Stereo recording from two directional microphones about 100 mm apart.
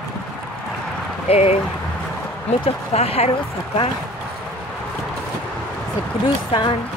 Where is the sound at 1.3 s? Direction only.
90° left.